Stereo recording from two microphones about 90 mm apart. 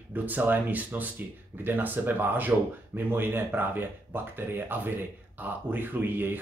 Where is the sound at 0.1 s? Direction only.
20° right (ahead or behind).